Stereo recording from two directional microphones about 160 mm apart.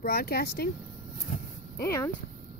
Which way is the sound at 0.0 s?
70° left (ahead or behind).